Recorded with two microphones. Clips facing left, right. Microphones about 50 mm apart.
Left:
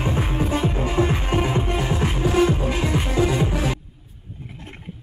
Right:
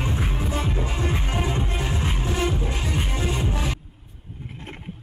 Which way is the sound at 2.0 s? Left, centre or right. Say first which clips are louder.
Left 8 dB; left.